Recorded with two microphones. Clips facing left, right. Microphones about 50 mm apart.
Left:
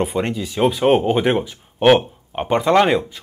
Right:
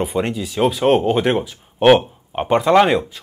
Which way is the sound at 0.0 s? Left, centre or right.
Centre.